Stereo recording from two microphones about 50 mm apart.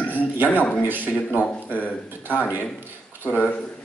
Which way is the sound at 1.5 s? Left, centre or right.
Left.